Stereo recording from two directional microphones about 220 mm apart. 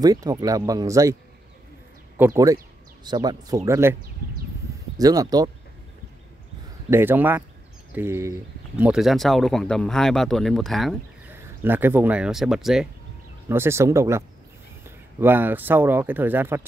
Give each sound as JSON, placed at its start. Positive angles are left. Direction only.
{"t": 0.0, "sound": "speech", "side_deg": -15}
{"t": 2.1, "sound": "speech", "side_deg": -10}
{"t": 4.9, "sound": "speech", "side_deg": -15}
{"t": 6.9, "sound": "speech", "side_deg": -10}
{"t": 11.3, "sound": "speech", "side_deg": -10}